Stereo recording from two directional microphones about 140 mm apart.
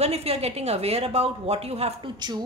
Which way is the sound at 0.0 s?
50° right (ahead or behind).